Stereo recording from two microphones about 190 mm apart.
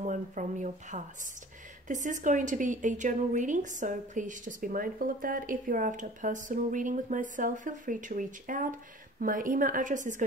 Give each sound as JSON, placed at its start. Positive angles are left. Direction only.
{"t": 0.0, "sound": "a woman's voice", "side_deg": -40}